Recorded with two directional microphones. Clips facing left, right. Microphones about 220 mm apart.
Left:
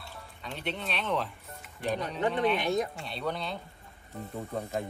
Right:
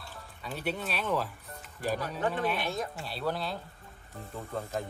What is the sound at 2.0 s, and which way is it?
Speech, 20° left (ahead or behind).